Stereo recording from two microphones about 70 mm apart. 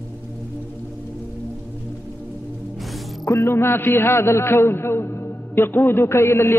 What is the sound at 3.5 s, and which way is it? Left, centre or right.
A man's voice, left.